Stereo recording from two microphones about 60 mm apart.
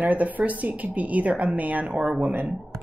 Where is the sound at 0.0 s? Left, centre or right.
Right.